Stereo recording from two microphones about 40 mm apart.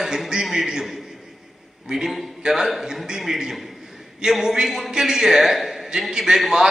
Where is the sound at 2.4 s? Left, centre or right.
Centre.